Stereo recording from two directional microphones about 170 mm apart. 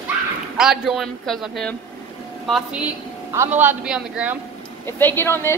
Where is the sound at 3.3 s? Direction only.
15° right (ahead or behind).